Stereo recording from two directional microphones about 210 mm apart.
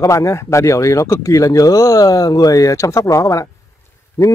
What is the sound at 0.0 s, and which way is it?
Speech, 15° left (ahead or behind).